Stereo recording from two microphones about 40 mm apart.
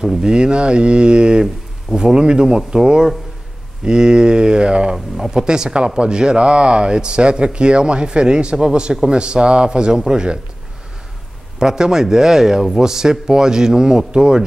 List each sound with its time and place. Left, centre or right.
0.0 s speech: centre
4.9 s speech: centre
5.3 s speech: right
11.6 s speech: centre